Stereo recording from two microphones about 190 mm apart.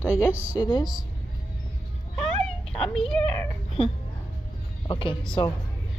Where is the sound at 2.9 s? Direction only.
5° left (ahead or behind).